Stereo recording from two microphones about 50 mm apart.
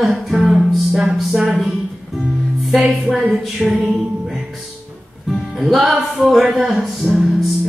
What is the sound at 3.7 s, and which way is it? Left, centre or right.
Music, right.